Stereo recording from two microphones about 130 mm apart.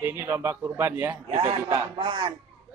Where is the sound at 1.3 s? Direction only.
50° right (ahead or behind).